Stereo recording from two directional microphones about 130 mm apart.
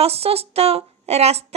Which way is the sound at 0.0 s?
50° right (ahead or behind).